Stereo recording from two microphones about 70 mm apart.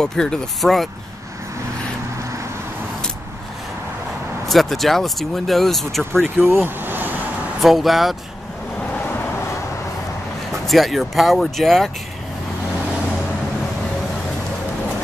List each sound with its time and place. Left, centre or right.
0.0 s speech: centre
4.5 s speech: centre
6.4 s vehicle: right
7.6 s speech: centre
10.6 s speech: centre